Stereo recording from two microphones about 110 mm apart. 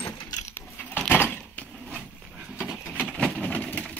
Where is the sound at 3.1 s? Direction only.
5° left (ahead or behind).